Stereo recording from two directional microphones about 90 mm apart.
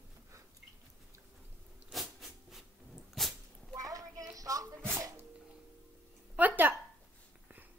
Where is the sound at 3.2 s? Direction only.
Centre (ahead or behind).